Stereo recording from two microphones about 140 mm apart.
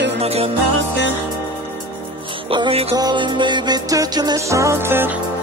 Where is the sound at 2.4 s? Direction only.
40° right (ahead or behind).